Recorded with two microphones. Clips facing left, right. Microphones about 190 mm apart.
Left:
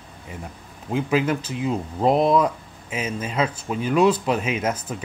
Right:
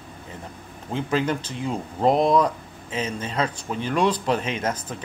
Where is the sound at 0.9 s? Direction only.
5° left (ahead or behind).